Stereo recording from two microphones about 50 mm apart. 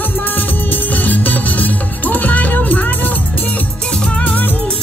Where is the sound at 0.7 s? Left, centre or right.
Left.